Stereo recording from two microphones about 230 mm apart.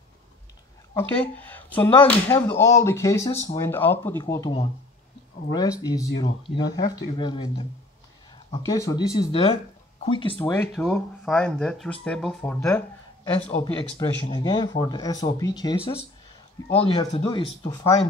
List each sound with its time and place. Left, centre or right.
0.9 s speech: centre
10.3 s speech: centre
13.6 s speech: centre